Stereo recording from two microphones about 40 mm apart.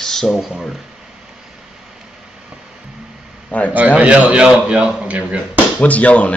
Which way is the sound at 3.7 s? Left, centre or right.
Right.